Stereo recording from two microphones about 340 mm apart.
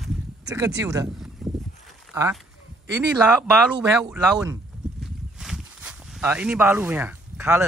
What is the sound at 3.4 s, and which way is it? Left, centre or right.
Speech, centre.